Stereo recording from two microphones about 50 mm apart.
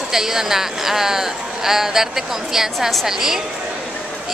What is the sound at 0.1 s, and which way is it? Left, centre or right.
Speech, centre.